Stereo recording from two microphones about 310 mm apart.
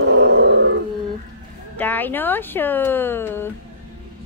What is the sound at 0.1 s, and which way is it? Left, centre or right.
Grunt, right.